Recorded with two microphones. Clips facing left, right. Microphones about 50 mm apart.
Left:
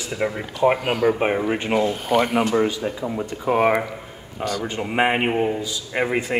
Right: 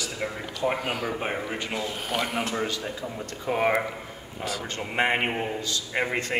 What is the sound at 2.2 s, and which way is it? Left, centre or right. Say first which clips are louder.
Speech: left 8 dB; centre.